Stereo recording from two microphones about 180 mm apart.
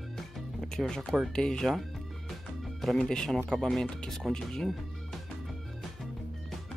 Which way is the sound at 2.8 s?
Centre (ahead or behind).